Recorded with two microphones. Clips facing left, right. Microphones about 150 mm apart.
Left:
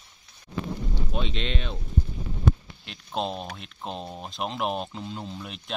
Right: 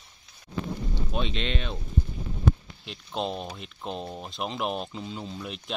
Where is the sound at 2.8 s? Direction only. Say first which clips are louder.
Left 1 dB; centre (ahead or behind).